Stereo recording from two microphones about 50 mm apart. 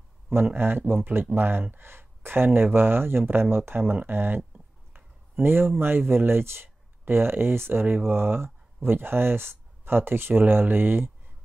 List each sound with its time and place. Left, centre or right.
0.6 s speech: right